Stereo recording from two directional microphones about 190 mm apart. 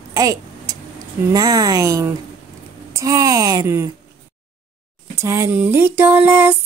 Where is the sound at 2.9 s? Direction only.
15° right (ahead or behind).